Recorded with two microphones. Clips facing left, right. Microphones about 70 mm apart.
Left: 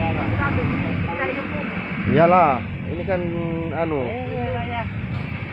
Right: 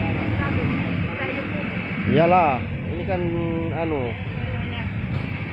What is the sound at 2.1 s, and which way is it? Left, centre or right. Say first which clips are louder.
Speech: left 2 dB; left.